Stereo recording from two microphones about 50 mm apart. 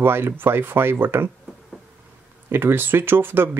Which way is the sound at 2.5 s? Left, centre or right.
Right.